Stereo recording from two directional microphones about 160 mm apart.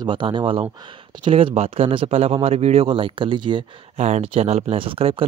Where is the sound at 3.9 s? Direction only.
45° right (ahead or behind).